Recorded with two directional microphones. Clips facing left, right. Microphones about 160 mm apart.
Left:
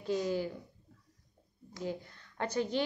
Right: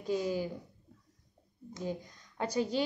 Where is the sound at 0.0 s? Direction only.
15° right (ahead or behind).